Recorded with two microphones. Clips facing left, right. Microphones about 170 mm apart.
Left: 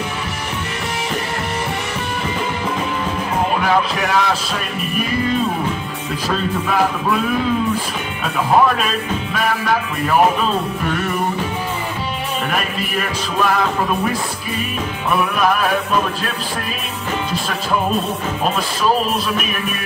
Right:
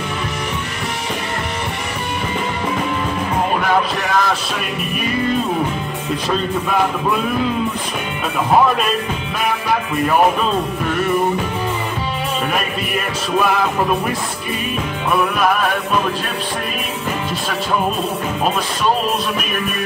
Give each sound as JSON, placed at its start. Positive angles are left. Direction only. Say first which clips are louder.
{"t": 4.0, "sound": "music", "louder": "even", "side_deg": 0}
{"t": 6.7, "sound": "music", "louder": "even", "side_deg": 0}
{"t": 12.9, "sound": "music", "louder": "right 3 dB", "side_deg": 0}
{"t": 15.1, "sound": "music", "louder": "even", "side_deg": 0}